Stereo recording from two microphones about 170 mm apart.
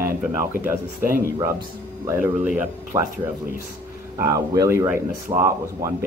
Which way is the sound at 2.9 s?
25° right (ahead or behind).